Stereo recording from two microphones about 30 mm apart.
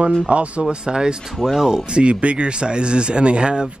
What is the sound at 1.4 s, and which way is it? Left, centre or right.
Speech, centre.